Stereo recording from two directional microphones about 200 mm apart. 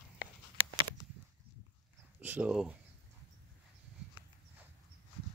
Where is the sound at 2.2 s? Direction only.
10° right (ahead or behind).